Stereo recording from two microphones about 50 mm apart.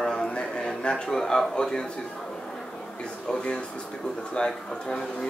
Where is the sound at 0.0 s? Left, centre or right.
Centre.